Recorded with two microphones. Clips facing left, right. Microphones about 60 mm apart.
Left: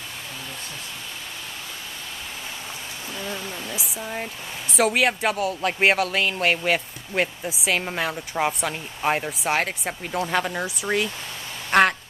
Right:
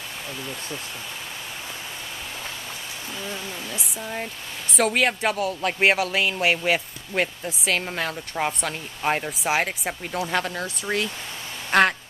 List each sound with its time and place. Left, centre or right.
3.3 s speech: centre
3.6 s speech: centre